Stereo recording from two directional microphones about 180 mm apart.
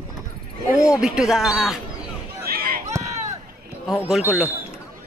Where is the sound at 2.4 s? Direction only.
55° right (ahead or behind).